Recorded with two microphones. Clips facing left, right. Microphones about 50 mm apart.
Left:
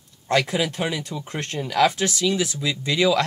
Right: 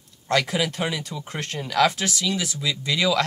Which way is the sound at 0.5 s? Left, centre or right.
Centre.